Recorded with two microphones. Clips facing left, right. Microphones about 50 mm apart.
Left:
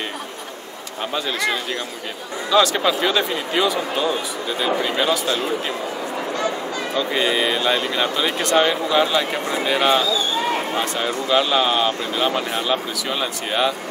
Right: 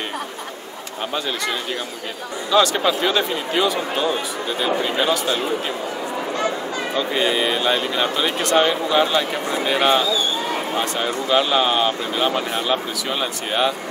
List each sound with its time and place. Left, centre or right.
2.5 s speech: centre
6.3 s a sound: right
7.0 s speech: centre